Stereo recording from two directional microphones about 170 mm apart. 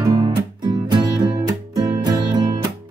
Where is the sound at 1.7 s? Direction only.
25° right (ahead or behind).